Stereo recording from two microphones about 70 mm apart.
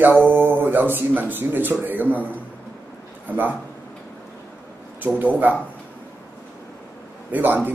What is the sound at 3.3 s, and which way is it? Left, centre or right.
Speech, right.